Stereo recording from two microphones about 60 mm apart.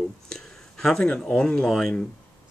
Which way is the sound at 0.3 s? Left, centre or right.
Centre.